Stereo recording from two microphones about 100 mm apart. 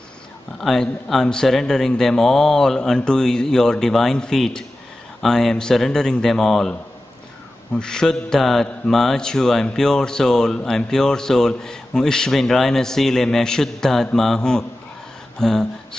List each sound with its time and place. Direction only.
0.6 s speech: 5° left (ahead or behind)
7.7 s speech: 5° left (ahead or behind)
15.3 s a sound: 5° left (ahead or behind)